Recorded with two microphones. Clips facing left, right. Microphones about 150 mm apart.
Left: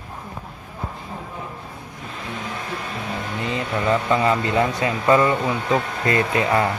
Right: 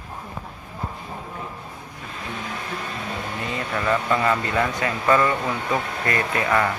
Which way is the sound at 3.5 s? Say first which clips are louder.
Left 3 dB; 25° left (ahead or behind).